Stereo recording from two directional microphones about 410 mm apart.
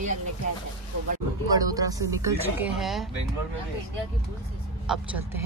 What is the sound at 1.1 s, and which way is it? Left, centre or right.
Speech, centre.